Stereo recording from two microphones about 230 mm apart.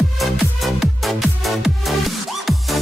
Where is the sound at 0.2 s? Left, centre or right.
Centre.